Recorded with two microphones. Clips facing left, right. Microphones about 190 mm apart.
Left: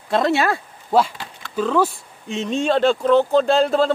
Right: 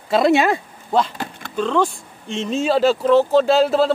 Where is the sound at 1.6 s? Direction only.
5° left (ahead or behind).